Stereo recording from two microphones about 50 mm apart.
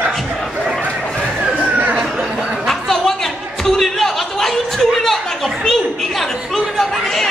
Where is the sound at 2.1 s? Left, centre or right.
Right.